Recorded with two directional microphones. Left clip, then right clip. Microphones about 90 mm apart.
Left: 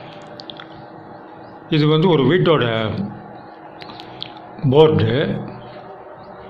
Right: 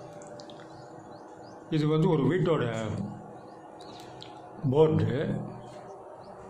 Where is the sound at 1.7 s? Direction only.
30° left (ahead or behind).